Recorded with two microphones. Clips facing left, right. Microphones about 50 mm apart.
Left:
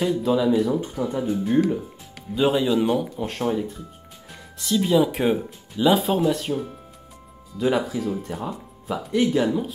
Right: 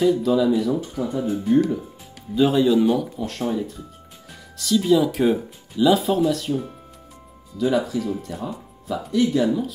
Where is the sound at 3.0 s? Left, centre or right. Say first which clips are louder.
Even; left.